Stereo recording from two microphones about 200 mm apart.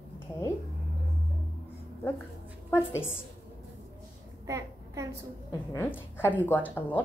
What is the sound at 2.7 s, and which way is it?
Speech, 10° left (ahead or behind).